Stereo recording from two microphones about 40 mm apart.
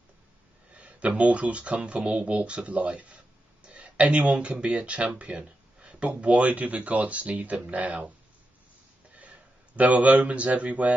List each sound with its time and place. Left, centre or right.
0.7 s speech: right
5.2 s a sound: right
6.0 s speech: right
9.2 s speech: right